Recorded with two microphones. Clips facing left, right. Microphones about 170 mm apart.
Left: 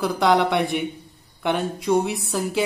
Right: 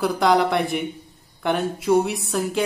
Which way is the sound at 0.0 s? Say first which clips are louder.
Even; centre (ahead or behind).